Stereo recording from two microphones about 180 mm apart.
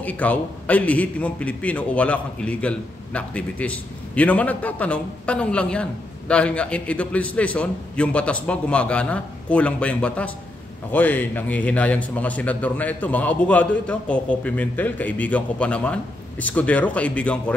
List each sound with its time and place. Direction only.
0.0 s a man's voice: 10° left (ahead or behind)